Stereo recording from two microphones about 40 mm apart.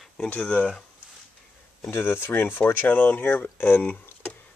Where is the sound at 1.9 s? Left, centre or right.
Left.